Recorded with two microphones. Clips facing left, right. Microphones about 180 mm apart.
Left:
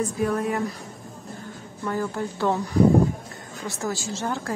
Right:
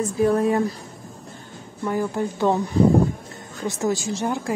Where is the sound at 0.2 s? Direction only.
30° right (ahead or behind).